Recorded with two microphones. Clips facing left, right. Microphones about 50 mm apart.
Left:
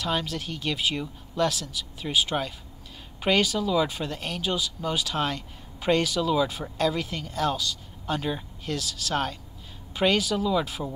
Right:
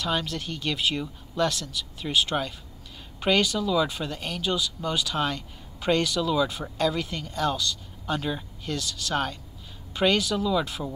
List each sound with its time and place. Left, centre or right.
0.0 s speech: centre